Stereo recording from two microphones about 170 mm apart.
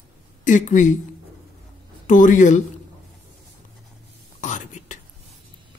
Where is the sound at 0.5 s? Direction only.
45° left (ahead or behind).